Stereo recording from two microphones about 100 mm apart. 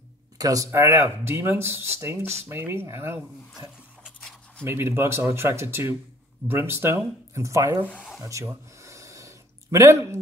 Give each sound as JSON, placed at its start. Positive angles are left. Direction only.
{"t": 0.4, "sound": "speech", "side_deg": -35}
{"t": 4.2, "sound": "a sound", "side_deg": 5}
{"t": 4.6, "sound": "speech", "side_deg": -25}
{"t": 8.2, "sound": "gasp", "side_deg": -30}